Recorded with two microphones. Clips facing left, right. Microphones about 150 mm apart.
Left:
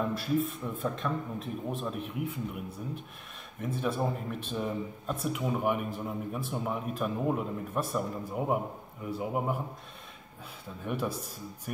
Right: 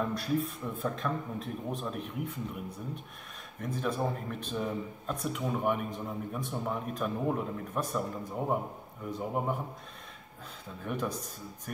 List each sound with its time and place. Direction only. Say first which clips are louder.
0.0 s speech: left 2 dB; centre (ahead or behind)
3.6 s speech: left 1 dB; 5° left (ahead or behind)
10.8 s speech: left 1 dB; 5° left (ahead or behind)